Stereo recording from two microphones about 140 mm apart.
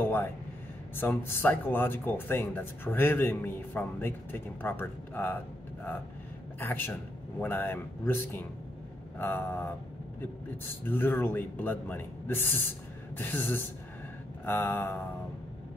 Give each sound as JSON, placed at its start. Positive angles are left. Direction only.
{"t": 0.0, "sound": "a sound", "side_deg": 15}
{"t": 0.9, "sound": "speech", "side_deg": 15}
{"t": 6.6, "sound": "speech", "side_deg": 15}